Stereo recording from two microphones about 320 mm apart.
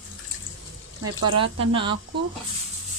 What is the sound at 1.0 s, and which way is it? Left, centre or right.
Speech, right.